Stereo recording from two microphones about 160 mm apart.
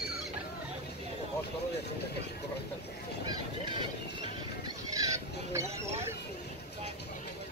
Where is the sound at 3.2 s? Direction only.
30° right (ahead or behind).